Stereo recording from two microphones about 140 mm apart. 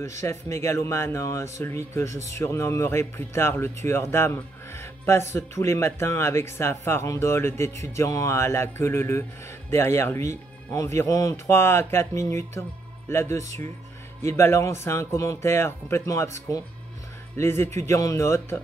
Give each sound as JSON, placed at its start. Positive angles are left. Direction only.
{"t": 0.2, "sound": "speech", "side_deg": 20}